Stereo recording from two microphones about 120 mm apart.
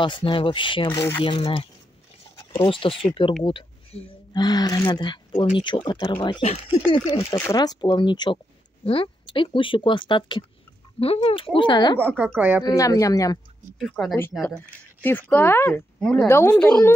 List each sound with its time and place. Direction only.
0.0 s speech: 45° left (ahead or behind)
0.9 s a woman's voice: 20° left (ahead or behind)
1.2 s speech: 50° left (ahead or behind)
4.3 s speech: 35° left (ahead or behind)
6.4 s speech: 60° left (ahead or behind)
6.9 s speech: 50° left (ahead or behind)
7.5 s speech: 35° left (ahead or behind)
12.4 s speech: 15° right (ahead or behind)
12.6 s a woman's voice: 30° left (ahead or behind)
13.7 s speech: centre (ahead or behind)
15.0 s speech: 15° left (ahead or behind)
16.0 s speech: 5° left (ahead or behind)
16.3 s a woman's voice: 20° left (ahead or behind)
16.5 s speech: 10° left (ahead or behind)